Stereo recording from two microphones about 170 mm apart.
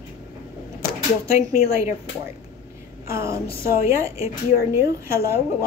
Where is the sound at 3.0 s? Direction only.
15° right (ahead or behind).